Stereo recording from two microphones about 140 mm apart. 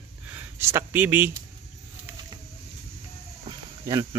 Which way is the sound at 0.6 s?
15° right (ahead or behind).